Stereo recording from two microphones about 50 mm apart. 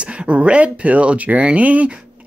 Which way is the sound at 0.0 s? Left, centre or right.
Right.